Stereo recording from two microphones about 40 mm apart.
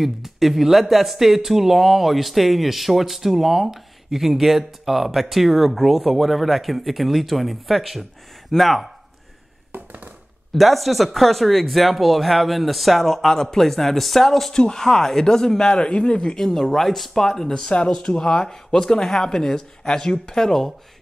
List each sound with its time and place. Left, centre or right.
0.0 s speech: centre
10.5 s speech: centre
14.5 s speech: centre
15.7 s a man's voice: left
16.3 s speech: centre
17.6 s speech: centre